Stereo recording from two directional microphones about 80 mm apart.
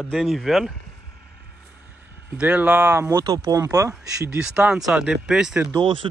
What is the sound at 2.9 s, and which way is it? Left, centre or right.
Speech, right.